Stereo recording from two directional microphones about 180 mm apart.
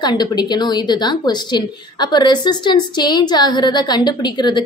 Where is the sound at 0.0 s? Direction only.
25° left (ahead or behind).